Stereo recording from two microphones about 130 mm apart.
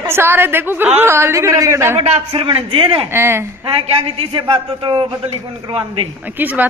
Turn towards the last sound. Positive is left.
turn(degrees=-15)  # may be behind; listen again after turning